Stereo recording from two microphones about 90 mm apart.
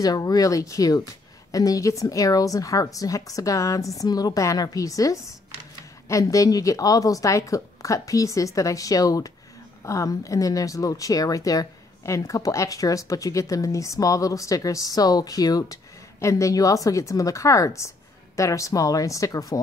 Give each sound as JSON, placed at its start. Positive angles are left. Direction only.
{"t": 0.0, "sound": "speech", "side_deg": 45}